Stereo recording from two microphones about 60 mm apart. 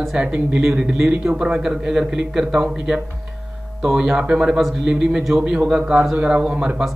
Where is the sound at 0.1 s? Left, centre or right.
Right.